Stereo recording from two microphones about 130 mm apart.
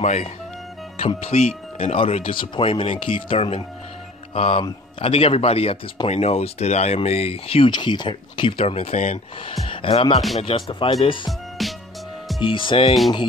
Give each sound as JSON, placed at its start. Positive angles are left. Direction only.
{"t": 0.0, "sound": "speech", "side_deg": 60}
{"t": 7.7, "sound": "speech", "side_deg": 35}
{"t": 9.7, "sound": "speech", "side_deg": 45}
{"t": 11.2, "sound": "music", "side_deg": 0}
{"t": 12.4, "sound": "speech", "side_deg": 40}